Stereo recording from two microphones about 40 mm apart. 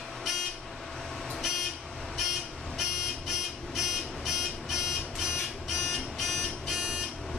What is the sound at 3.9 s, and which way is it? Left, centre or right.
Buzzer, centre.